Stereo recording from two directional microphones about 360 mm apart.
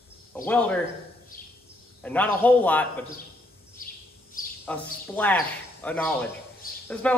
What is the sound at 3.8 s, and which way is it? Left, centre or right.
Bird, left.